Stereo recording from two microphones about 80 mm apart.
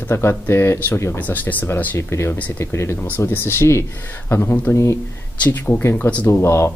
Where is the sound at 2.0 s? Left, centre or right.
Left.